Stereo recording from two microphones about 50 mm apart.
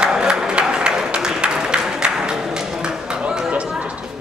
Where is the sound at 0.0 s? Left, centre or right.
Centre.